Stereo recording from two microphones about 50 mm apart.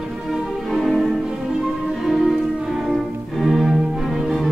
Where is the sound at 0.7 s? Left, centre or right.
Centre.